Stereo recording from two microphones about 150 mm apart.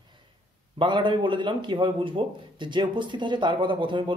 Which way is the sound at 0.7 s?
30° right (ahead or behind).